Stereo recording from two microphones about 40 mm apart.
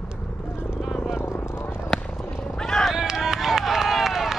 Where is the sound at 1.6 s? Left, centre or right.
Left.